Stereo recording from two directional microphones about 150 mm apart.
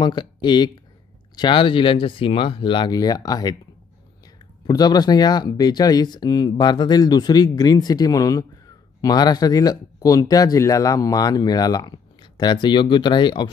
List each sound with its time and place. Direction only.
0.0 s speech: 30° left (ahead or behind)
4.6 s speech: 25° left (ahead or behind)